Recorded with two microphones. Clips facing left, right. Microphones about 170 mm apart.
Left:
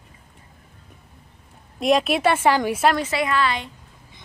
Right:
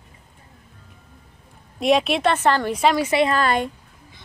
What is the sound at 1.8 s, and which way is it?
Speech, centre (ahead or behind).